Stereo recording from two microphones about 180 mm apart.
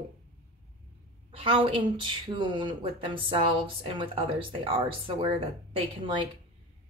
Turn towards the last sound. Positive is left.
turn(degrees=-30)  # may be behind; listen again after turning